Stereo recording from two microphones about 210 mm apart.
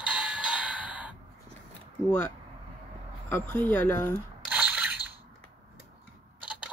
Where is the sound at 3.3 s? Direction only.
5° left (ahead or behind).